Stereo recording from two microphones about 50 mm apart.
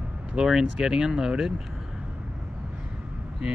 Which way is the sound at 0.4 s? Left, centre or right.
Centre.